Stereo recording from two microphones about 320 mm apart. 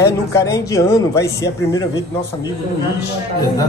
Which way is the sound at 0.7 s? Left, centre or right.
Centre.